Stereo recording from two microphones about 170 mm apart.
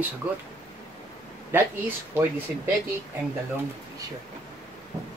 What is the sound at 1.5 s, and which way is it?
Speech, 10° right (ahead or behind).